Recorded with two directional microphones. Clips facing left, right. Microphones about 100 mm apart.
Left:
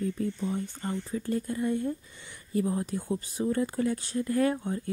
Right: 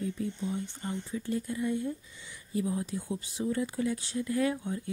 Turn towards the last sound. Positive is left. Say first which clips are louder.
# left 3 dB
turn(degrees=50)  # may be behind; listen again after turning